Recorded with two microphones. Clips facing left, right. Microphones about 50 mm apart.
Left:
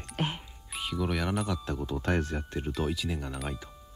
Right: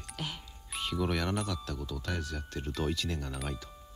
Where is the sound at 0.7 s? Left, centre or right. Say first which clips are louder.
Left 1 dB; centre.